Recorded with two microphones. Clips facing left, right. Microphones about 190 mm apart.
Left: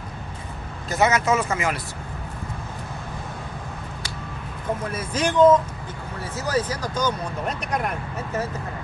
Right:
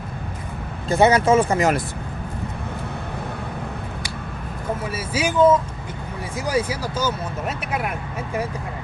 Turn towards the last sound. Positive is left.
turn(degrees=-5)  # may be behind; listen again after turning